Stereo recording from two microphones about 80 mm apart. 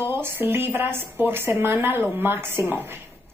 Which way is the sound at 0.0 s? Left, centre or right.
Right.